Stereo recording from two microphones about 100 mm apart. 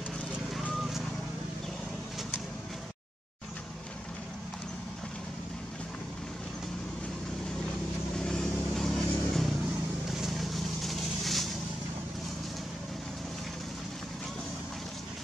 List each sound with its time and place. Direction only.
8.2 s vehicle: 5° left (ahead or behind)